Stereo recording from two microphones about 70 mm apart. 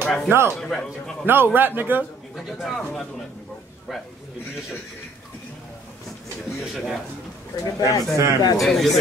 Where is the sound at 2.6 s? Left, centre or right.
Centre.